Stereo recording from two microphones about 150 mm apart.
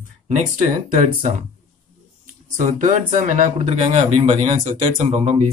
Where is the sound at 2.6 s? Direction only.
60° right (ahead or behind).